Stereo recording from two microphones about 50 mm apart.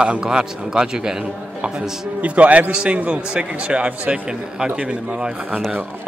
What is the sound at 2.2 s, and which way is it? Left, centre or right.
A man's voice, right.